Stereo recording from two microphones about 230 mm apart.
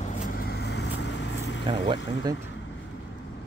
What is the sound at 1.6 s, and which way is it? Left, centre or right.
Speech, right.